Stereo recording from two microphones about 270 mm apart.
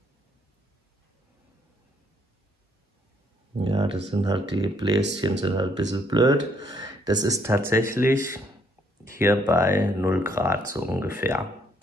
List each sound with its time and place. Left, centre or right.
3.5 s speech: centre